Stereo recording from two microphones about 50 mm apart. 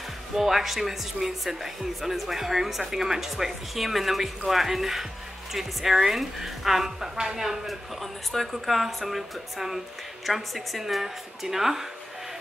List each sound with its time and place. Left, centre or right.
0.4 s a woman's voice: centre